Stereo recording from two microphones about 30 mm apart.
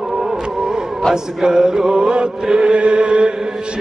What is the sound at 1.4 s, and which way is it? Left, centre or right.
Chant, right.